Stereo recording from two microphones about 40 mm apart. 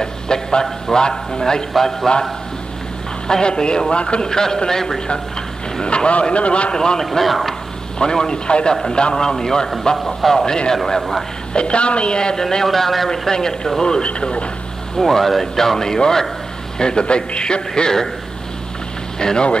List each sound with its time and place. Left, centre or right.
0.0 s a man's voice: centre
1.7 s a man's voice: centre
3.3 s a man's voice: centre
5.8 s a man's voice: left
6.7 s a man's voice: centre
7.1 s a man's voice: centre
8.0 s a man's voice: centre
11.0 s a man's voice: centre
11.5 s a man's voice: left
15.0 s a man's voice: centre; by 17.9 s left
19.1 s a man's voice: centre